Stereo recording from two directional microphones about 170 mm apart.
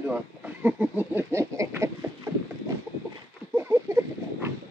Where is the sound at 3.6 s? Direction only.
15° right (ahead or behind).